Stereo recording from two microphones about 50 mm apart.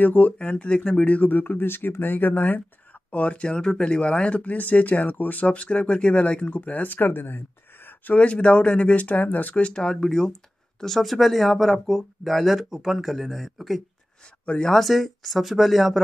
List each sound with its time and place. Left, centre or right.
0.0 s speech: left; by 1.0 s centre
1.0 s speech: left
3.1 s speech: left
6.8 s speech: left
8.1 s speech: left; by 16.0 s centre